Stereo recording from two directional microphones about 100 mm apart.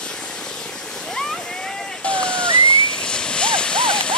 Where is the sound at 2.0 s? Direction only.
10° left (ahead or behind).